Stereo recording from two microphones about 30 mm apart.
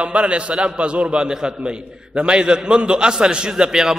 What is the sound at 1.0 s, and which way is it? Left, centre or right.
A man's voice, right.